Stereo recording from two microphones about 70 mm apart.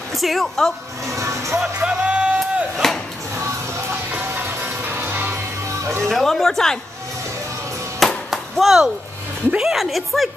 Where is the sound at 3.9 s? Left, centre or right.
Right.